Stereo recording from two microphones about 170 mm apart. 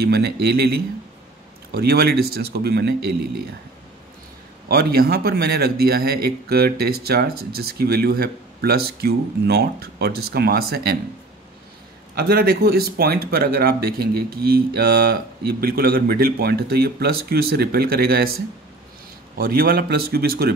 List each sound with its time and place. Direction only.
0.0 s speech: 70° right (ahead or behind)
4.6 s a man's voice: 65° right (ahead or behind)
12.2 s a man's voice: 65° right (ahead or behind)